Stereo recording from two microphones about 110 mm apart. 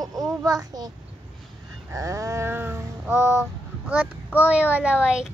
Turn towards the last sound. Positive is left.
turn(degrees=-10)  # may be behind; listen again after turning